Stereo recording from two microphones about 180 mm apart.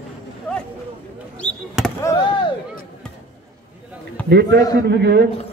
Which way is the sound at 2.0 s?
25° left (ahead or behind).